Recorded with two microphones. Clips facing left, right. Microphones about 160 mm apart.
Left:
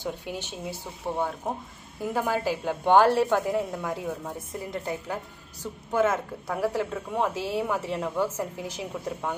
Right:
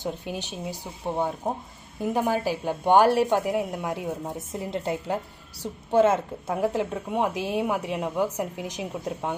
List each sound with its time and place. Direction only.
0.0 s a woman's voice: 15° right (ahead or behind)